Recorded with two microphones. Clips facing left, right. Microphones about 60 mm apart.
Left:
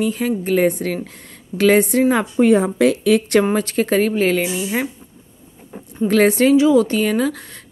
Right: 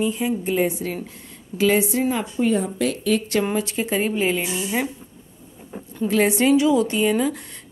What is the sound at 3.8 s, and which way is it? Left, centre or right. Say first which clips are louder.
Speech: left 7 dB; left.